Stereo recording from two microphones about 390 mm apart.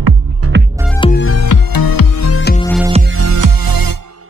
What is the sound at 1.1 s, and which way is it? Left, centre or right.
Music, left.